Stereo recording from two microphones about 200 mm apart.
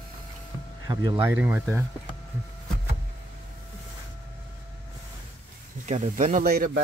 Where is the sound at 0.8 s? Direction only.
20° right (ahead or behind).